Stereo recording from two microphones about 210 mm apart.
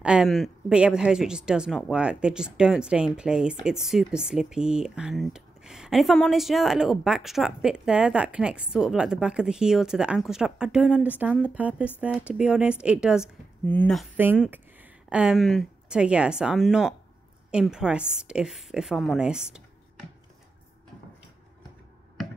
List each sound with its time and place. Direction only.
0.0 s speech: 5° right (ahead or behind)
14.1 s speech: 10° right (ahead or behind)